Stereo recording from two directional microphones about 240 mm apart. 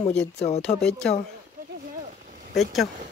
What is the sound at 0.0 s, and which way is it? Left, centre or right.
Speech, left.